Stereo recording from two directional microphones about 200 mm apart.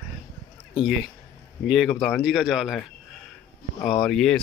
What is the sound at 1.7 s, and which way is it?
Speech, centre (ahead or behind).